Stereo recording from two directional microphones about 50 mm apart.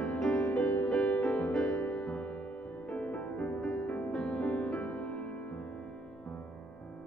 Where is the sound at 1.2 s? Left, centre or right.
Centre.